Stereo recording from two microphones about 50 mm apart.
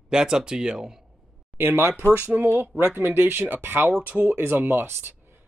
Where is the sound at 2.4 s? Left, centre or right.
Right.